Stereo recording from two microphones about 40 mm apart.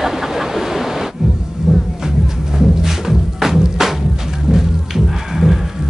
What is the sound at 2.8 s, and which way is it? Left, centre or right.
Music, centre.